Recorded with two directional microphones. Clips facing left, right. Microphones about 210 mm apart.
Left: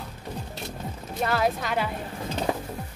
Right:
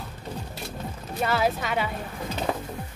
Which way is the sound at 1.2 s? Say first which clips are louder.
Even; centre (ahead or behind).